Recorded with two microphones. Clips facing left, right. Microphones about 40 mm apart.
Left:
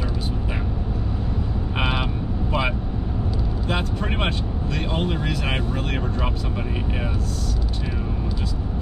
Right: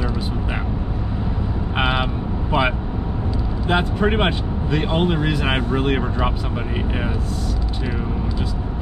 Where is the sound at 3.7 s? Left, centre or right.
Centre.